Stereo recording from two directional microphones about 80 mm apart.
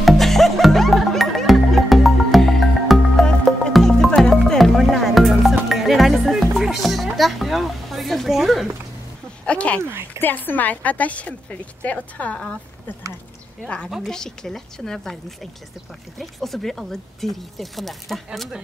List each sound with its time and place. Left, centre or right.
0.0 s music: centre
9.5 s a sound: centre
9.8 s speech: right
10.1 s a woman's voice: left
13.8 s speech: centre